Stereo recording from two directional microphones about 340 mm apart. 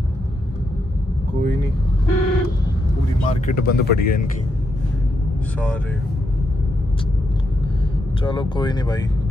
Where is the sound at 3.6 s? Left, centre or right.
Left.